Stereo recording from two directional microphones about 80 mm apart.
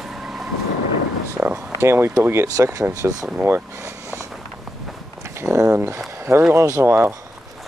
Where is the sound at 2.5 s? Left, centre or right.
Right.